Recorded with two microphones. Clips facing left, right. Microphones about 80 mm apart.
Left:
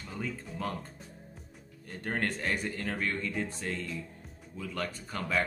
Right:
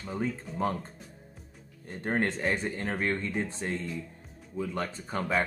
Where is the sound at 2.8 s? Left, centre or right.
Right.